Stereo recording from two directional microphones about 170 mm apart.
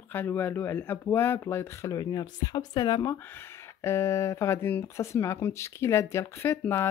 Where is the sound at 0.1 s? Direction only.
10° left (ahead or behind).